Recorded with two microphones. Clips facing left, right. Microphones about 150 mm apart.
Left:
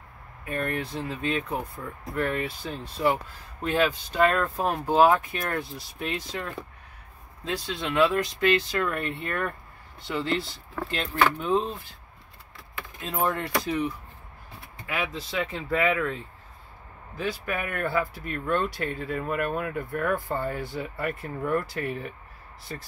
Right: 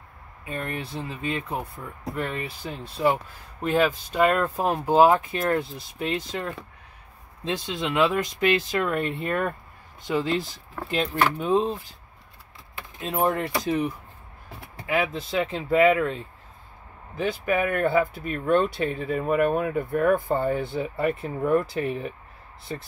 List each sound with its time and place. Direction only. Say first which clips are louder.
0.5 s speech: left 2 dB; 20° right (ahead or behind)
3.6 s speech: right 2 dB; 10° right (ahead or behind)
4.4 s speech: right 2 dB; 20° right (ahead or behind)
13.0 s speech: right 3 dB; 20° right (ahead or behind)
15.0 s speech: right 5 dB; 25° right (ahead or behind)
17.2 s speech: right 6 dB; 20° right (ahead or behind)